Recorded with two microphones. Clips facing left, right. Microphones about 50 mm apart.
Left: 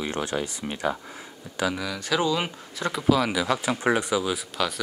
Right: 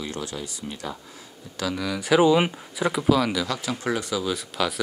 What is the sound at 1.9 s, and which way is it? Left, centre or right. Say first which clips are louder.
Speech: right 10 dB; centre.